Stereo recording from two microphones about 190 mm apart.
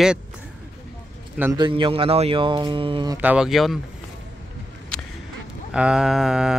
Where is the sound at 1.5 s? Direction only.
25° right (ahead or behind).